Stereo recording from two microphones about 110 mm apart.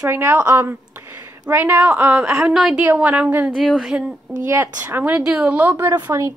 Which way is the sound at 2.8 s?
15° right (ahead or behind).